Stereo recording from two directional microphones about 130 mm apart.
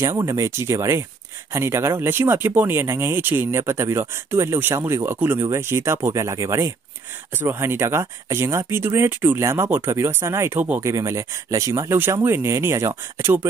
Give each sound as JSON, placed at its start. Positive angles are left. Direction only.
{"t": 0.0, "sound": "speech", "side_deg": -20}